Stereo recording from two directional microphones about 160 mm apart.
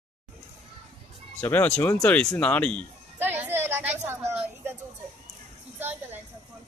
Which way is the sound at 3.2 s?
10° right (ahead or behind).